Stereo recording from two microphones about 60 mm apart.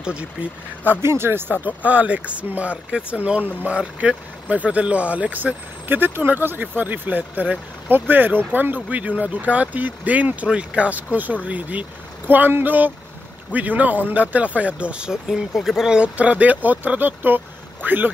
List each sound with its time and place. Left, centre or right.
0.0 s speech: centre
1.0 s speech: right
1.8 s speech: right
12.3 s speech: right; by 15.1 s centre
15.2 s speech: centre
16.0 s speech: right